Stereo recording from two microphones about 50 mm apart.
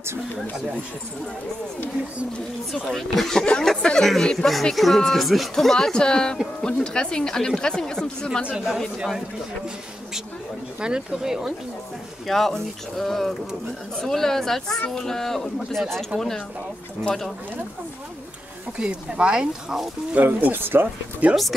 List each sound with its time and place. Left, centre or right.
2.9 s speech: centre
8.6 s speech: centre
10.8 s speech: centre
12.3 s speech: centre
18.8 s speech: right
20.2 s speech: right
21.2 s speech: right